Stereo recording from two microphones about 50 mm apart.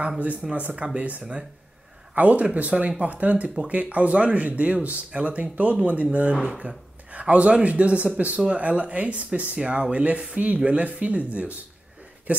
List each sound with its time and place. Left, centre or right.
0.2 s speech: right
7.1 s speech: right
12.3 s a sound: right